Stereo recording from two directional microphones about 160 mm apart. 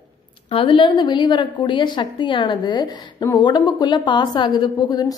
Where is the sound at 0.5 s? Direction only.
35° left (ahead or behind).